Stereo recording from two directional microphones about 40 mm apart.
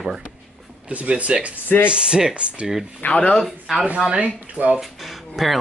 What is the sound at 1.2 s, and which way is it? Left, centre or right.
Speech, right.